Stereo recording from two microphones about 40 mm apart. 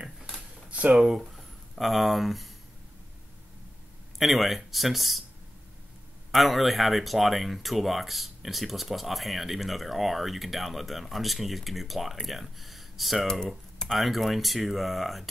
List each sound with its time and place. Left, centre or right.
0.7 s a sound: right
0.9 s speech: centre
4.2 s speech: centre
6.3 s speech: centre